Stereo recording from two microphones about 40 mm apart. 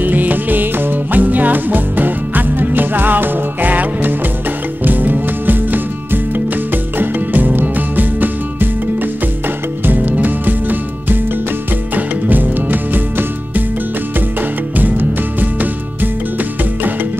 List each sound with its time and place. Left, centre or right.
0.0 s music: right
9.8 s music: right
14.8 s music: right